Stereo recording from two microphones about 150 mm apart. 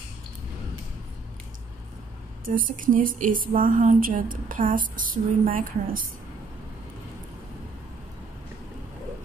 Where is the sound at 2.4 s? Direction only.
65° right (ahead or behind).